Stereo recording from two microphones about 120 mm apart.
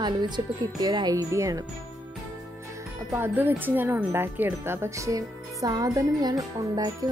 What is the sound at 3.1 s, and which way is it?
Speech, 20° right (ahead or behind).